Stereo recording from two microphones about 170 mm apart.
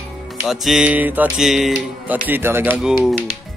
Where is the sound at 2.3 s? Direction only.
15° right (ahead or behind).